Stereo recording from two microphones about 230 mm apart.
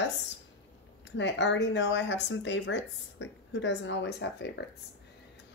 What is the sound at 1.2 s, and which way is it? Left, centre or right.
Speech, left.